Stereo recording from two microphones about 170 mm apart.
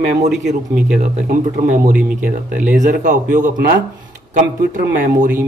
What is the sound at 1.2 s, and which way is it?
Speech, 55° right (ahead or behind).